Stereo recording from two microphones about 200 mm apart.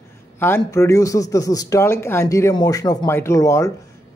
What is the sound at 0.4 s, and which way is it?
Speech, 15° left (ahead or behind).